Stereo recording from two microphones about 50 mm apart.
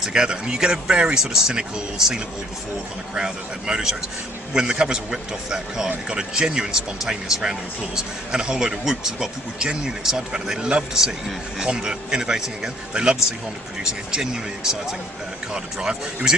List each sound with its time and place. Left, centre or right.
0.0 s speech: centre